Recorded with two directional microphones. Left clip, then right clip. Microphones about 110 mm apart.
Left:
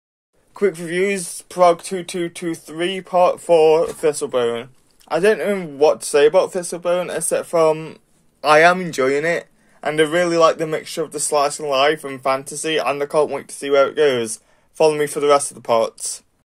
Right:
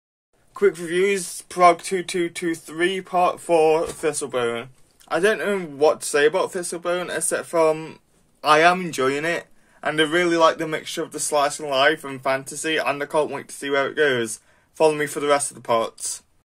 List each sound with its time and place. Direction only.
0.6 s speech: 25° left (ahead or behind)